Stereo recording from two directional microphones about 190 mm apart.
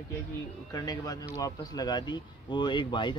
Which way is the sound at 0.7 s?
20° left (ahead or behind).